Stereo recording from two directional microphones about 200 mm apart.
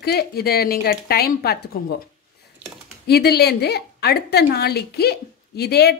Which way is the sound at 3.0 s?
55° left (ahead or behind).